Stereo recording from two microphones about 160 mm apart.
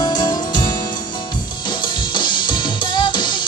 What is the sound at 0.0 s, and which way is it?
Music, 25° left (ahead or behind).